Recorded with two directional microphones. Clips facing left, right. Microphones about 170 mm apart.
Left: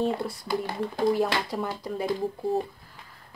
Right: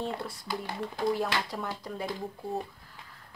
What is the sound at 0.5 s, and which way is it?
Speech, 50° left (ahead or behind).